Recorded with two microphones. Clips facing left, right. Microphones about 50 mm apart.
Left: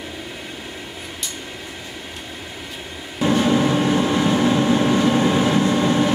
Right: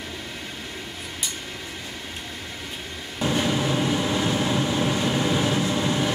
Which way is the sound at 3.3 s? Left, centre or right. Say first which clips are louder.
Left 6 dB; left.